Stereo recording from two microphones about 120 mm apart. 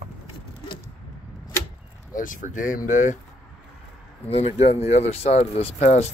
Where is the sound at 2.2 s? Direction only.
90° left.